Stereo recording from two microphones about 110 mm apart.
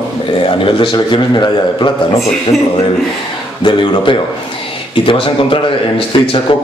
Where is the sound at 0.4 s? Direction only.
50° left (ahead or behind).